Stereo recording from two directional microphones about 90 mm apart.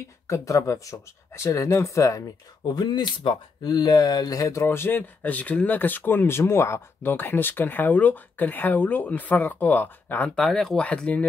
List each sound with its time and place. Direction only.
0.3 s speech: 35° left (ahead or behind)
2.6 s speech: 55° left (ahead or behind); by 10.3 s 20° left (ahead or behind)
10.3 s speech: 5° left (ahead or behind)
10.8 s speech: 15° left (ahead or behind)